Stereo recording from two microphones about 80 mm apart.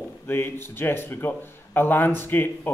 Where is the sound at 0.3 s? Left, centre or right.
Left.